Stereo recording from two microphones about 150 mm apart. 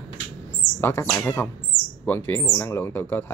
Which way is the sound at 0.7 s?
15° left (ahead or behind).